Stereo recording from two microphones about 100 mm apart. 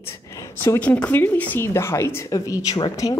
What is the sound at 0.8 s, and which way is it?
A woman's voice, 15° left (ahead or behind).